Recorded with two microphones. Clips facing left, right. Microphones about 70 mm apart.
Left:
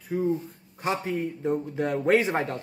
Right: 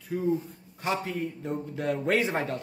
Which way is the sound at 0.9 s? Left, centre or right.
Centre.